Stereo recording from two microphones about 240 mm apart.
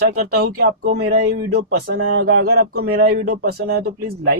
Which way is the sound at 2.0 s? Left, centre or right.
Right.